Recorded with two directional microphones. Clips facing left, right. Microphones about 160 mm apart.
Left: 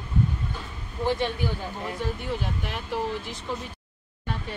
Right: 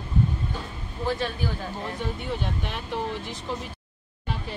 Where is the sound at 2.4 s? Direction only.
5° left (ahead or behind).